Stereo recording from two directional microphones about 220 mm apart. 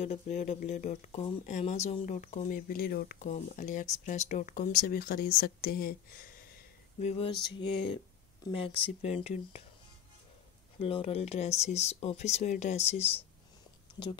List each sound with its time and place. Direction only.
0.0 s speech: 30° left (ahead or behind)
7.0 s speech: 30° left (ahead or behind)
10.8 s speech: 25° left (ahead or behind)